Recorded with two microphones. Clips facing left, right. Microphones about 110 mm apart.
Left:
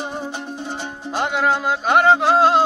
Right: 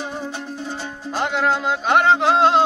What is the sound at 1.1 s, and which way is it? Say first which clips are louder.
Music: left 1 dB; 5° left (ahead or behind).